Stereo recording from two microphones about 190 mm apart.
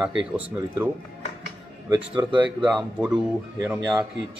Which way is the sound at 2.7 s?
Centre (ahead or behind).